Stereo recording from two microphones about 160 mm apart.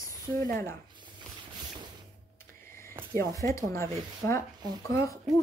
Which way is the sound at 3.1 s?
20° left (ahead or behind).